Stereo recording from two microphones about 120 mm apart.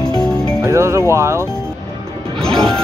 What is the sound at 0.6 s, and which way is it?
Speech, 25° right (ahead or behind).